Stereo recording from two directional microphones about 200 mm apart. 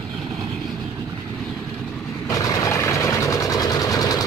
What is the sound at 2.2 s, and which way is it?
Vehicle, 15° left (ahead or behind).